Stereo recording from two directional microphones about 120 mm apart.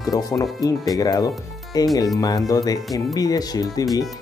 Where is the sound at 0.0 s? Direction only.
30° left (ahead or behind).